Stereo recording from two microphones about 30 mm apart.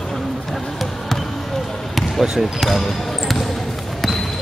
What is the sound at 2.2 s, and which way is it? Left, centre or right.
Speech, centre.